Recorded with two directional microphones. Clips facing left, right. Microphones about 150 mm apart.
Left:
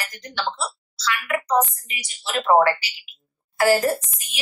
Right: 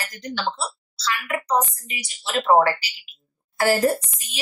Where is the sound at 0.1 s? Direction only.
35° right (ahead or behind).